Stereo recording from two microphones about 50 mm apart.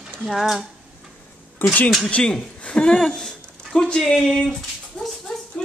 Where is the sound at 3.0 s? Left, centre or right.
Centre.